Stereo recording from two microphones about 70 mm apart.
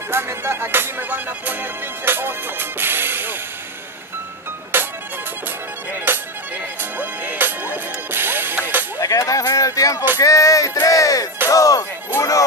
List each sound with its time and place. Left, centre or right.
0.1 s music: right
4.7 s music: right
6.1 s music: right
9.0 s a sound: left
11.4 s music: left
12.2 s speech: left